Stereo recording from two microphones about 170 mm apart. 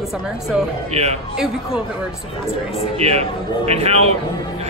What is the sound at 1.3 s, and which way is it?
Speech, 5° right (ahead or behind).